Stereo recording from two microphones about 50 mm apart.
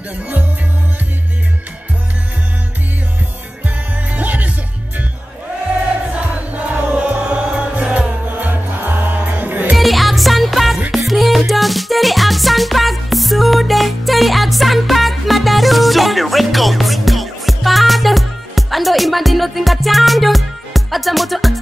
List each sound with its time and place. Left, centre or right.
3.6 s music: right
6.5 s music: right
8.3 s music: right
9.8 s music: centre